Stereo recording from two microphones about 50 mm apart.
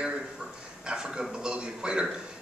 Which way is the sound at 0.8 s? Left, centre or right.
Centre.